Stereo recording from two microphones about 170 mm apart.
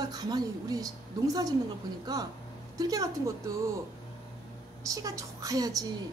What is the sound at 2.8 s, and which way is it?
Speech, 20° right (ahead or behind).